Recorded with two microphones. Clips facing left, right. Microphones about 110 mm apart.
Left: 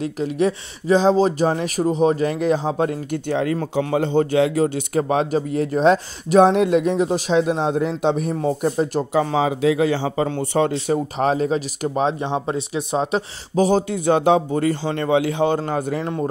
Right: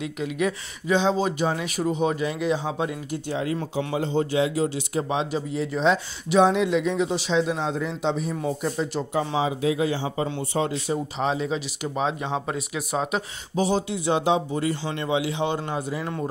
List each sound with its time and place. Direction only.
0.0 s speech: 35° left (ahead or behind)
2.2 s a man's voice: 45° left (ahead or behind)
8.4 s a man's voice: 40° left (ahead or behind)
9.1 s a man's voice: 60° left (ahead or behind)
10.9 s a man's voice: 50° left (ahead or behind); by 13.2 s 30° left (ahead or behind)
13.6 s a man's voice: 45° left (ahead or behind)